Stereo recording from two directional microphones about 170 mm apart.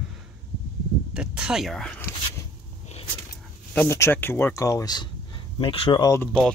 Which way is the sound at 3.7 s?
15° left (ahead or behind).